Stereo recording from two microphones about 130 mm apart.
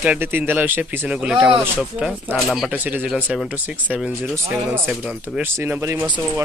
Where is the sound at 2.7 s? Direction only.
15° right (ahead or behind).